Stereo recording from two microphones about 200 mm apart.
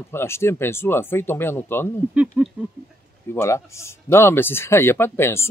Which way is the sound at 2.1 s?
5° right (ahead or behind).